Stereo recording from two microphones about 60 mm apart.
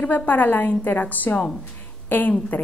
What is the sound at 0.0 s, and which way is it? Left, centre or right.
A woman's voice, left.